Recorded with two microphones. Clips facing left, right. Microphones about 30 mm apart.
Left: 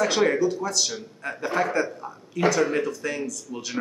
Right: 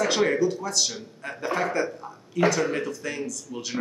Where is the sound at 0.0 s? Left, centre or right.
Centre.